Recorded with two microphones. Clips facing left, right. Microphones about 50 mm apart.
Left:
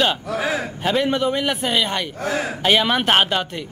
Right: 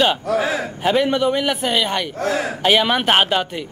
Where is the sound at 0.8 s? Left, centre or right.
Centre.